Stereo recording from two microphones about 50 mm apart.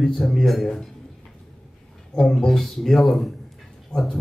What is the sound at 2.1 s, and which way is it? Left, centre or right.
A man's voice, centre.